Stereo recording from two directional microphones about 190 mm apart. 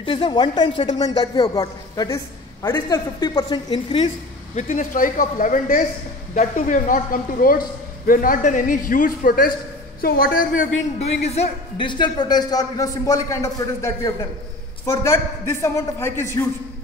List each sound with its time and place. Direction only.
0.0 s a man's voice: 25° left (ahead or behind)
4.6 s a man's voice: 40° left (ahead or behind)
11.2 s a man's voice: 35° left (ahead or behind); by 16.4 s 15° left (ahead or behind)